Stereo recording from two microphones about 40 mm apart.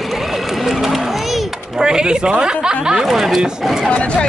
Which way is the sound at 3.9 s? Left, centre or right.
Left.